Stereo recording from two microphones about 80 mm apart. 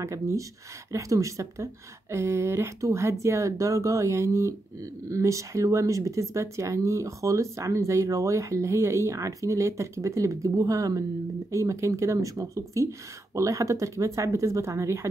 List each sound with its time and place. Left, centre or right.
0.0 s speech: right